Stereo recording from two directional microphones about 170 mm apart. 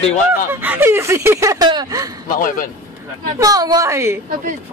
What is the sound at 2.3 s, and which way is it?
Speech, 55° left (ahead or behind).